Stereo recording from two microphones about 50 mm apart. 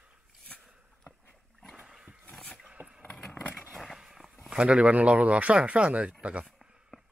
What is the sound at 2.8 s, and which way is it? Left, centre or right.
Vehicle, right.